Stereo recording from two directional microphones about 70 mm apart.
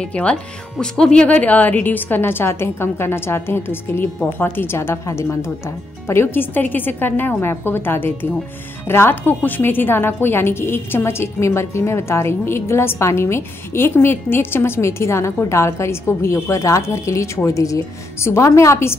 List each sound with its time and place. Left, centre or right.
0.1 s a woman's voice: centre; by 18.9 s left